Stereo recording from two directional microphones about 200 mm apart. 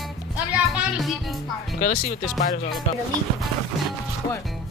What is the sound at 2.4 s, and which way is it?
Speech, 45° left (ahead or behind).